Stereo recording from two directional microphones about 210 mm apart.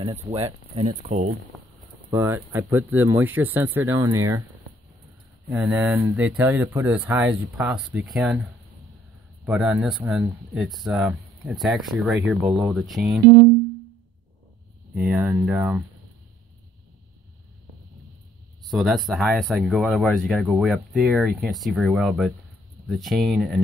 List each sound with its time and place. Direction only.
0.0 s speech: 30° right (ahead or behind)
2.0 s speech: 10° right (ahead or behind)
5.5 s speech: 5° right (ahead or behind)
15.0 s speech: 5° right (ahead or behind)
18.6 s speech: centre (ahead or behind)